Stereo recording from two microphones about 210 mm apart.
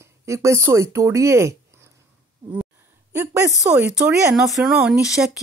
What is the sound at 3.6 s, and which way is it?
Speech, 5° right (ahead or behind).